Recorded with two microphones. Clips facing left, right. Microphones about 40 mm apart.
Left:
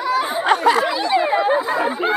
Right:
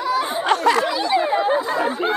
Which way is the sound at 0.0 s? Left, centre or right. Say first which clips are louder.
Left 2 dB; centre.